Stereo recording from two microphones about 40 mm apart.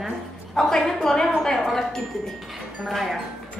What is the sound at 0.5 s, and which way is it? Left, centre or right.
A woman's voice, centre.